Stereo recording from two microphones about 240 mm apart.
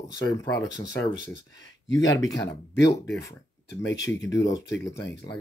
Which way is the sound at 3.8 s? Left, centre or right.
Left.